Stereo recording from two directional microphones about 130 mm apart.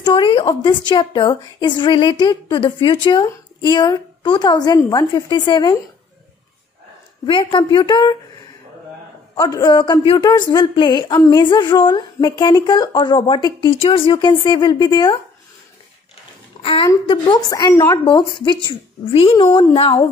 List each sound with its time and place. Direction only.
0.0 s a woman's voice: 35° left (ahead or behind)
7.2 s a woman's voice: 40° left (ahead or behind)
9.4 s a woman's voice: 30° left (ahead or behind)
16.6 s a woman's voice: 45° left (ahead or behind)
17.5 s a woman's voice: 30° left (ahead or behind); by 20.1 s 45° left (ahead or behind)